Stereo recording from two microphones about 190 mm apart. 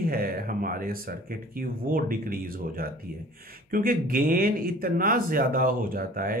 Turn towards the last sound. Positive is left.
turn(degrees=-50)  # may be behind; listen again after turning